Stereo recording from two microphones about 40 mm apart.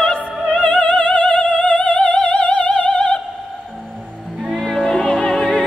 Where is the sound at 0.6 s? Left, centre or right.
Left.